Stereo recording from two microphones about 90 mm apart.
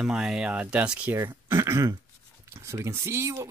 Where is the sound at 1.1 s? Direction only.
25° right (ahead or behind).